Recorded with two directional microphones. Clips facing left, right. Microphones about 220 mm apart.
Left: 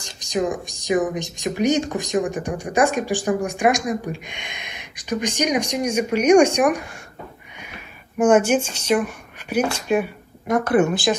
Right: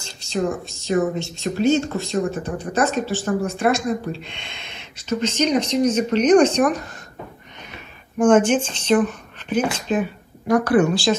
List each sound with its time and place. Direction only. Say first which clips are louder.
0.0 s speech: even; 15° left (ahead or behind)
8.2 s speech: right 1 dB; 10° left (ahead or behind)
10.5 s speech: right 1 dB; 20° left (ahead or behind)